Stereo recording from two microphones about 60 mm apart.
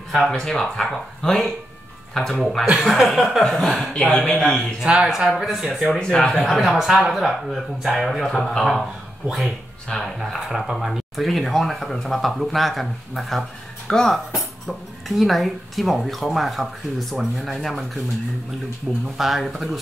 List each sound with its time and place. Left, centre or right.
0.3 s speech: centre
3.4 s speech: centre
4.8 s speech: centre
5.9 s speech: centre
6.4 s speech: centre
9.9 s speech: centre
10.5 s speech: centre
19.1 s speech: centre